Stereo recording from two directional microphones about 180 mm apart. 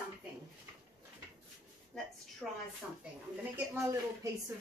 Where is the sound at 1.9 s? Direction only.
5° left (ahead or behind).